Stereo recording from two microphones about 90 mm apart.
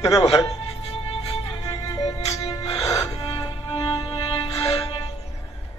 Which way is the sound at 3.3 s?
65° left (ahead or behind).